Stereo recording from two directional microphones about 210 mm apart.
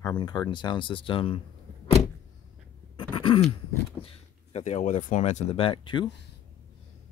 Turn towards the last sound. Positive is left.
turn(degrees=20)  # may be behind; listen again after turning